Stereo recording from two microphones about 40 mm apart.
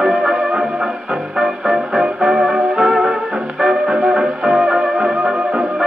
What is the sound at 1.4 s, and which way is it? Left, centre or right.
Music, centre.